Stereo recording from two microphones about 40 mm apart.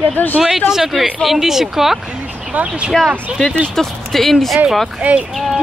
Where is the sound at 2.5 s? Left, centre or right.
Right.